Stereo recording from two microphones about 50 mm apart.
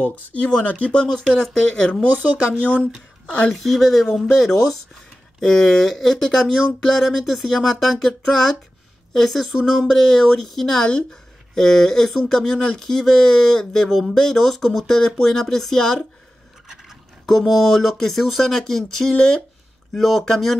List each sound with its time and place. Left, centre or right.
0.0 s speech: left
1.0 s speech: centre
3.5 s speech: centre
5.8 s speech: centre
16.6 s a sound: centre
17.3 s speech: centre